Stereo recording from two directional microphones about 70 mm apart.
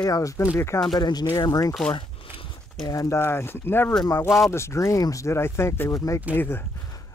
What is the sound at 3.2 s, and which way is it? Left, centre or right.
Speech, left.